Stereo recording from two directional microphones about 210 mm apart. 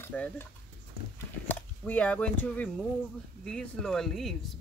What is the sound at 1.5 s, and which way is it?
Speech, 5° left (ahead or behind).